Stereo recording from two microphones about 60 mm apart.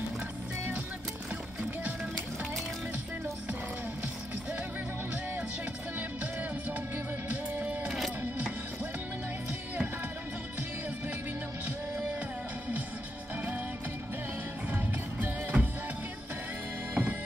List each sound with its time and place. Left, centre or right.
7.6 s music: right
14.7 s music: right
16.9 s music: right